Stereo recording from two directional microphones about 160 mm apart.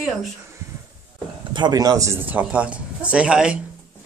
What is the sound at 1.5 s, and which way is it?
A man's voice, 25° right (ahead or behind).